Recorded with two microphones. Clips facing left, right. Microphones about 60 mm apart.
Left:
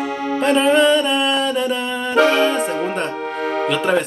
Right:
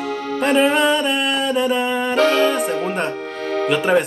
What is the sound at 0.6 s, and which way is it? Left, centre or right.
Music, centre.